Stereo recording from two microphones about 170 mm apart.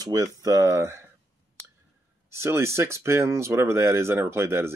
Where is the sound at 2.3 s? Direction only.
15° right (ahead or behind).